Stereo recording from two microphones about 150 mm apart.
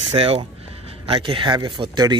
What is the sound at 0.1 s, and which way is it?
Speech, 40° right (ahead or behind).